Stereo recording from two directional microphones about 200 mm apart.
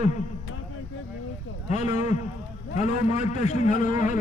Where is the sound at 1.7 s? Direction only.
35° left (ahead or behind).